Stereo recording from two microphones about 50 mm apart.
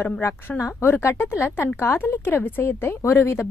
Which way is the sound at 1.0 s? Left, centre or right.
Left.